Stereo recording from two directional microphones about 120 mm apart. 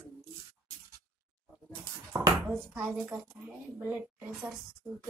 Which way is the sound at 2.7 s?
10° right (ahead or behind).